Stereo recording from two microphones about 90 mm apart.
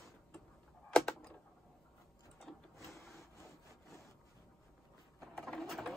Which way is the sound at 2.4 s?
Centre (ahead or behind).